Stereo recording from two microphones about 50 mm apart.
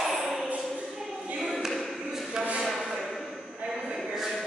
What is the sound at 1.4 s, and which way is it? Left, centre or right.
Choir, centre.